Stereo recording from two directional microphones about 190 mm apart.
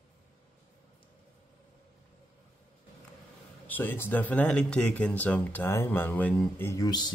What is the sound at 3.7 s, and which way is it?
Speech, 10° left (ahead or behind).